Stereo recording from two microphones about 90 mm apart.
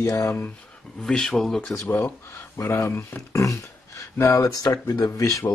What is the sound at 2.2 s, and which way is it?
Speech, 25° left (ahead or behind).